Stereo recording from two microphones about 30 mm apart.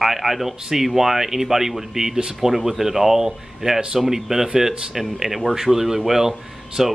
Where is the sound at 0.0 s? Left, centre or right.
Centre.